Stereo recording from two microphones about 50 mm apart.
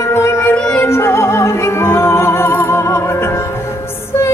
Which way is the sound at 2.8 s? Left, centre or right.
Left.